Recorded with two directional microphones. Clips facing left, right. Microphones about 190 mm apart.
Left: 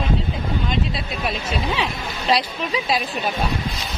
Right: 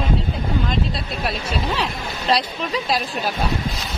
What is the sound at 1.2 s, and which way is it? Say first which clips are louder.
A woman's voice: even; centre (ahead or behind).